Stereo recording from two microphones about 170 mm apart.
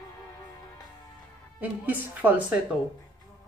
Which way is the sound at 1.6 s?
10° right (ahead or behind).